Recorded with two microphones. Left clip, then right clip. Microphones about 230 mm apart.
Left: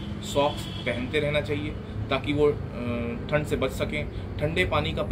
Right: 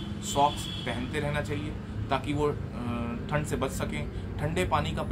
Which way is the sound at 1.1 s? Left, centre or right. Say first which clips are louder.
Left 7 dB; centre.